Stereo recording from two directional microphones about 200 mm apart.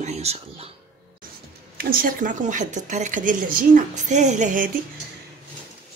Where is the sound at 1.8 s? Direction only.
45° right (ahead or behind).